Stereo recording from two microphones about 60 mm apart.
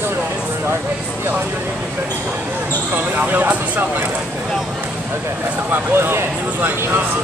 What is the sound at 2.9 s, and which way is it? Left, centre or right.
Speech, right.